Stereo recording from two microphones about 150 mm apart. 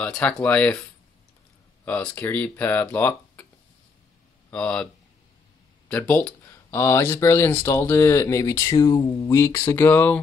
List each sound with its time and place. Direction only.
0.0 s speech: 5° left (ahead or behind)
1.9 s speech: 10° left (ahead or behind)
4.5 s speech: 5° left (ahead or behind)
5.9 s speech: 10° left (ahead or behind)